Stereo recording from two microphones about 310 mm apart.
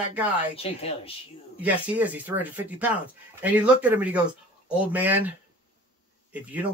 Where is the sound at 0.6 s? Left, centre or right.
Centre.